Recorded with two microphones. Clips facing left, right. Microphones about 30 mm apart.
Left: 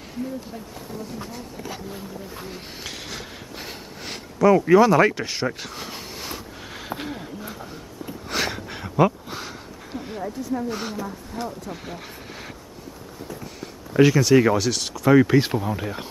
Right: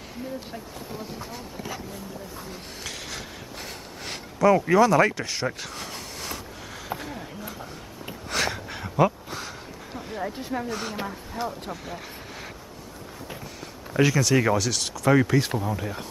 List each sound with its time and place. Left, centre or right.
2.3 s a sound: centre
4.7 s speech: centre
5.5 s vehicle: centre
7.1 s a sound: centre
10.2 s speech: right
10.7 s speech: centre
11.4 s speech: centre
11.7 s speech: centre
13.4 s speech: centre
15.2 s speech: left